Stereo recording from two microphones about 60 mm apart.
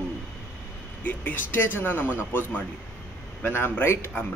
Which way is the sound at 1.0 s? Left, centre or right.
Left.